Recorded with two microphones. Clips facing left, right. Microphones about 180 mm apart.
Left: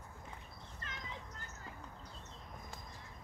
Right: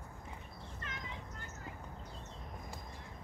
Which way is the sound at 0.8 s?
35° left (ahead or behind).